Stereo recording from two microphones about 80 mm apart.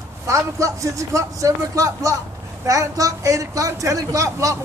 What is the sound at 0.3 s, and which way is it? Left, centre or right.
A man's voice, right.